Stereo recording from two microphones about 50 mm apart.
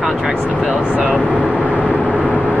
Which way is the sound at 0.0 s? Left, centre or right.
Centre.